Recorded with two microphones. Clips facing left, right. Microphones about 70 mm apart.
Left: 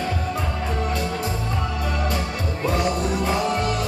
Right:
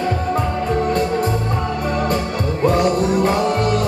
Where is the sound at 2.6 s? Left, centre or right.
Right.